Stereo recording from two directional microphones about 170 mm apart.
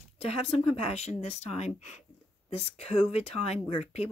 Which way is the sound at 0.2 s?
35° left (ahead or behind).